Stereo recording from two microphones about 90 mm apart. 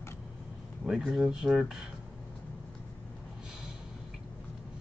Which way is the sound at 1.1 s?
5° right (ahead or behind).